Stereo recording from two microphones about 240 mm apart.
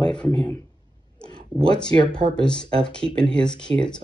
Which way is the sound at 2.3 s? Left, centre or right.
Centre.